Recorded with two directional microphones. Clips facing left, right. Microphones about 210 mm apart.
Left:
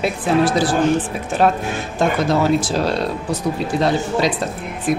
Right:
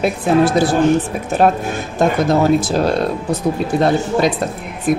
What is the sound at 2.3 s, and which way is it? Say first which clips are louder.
Speech: right 3 dB; 50° right (ahead or behind).